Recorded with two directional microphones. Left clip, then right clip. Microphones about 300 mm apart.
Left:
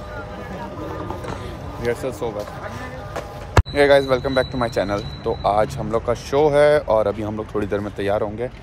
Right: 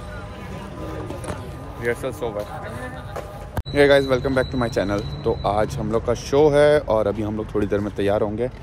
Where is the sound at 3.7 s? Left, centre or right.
Centre.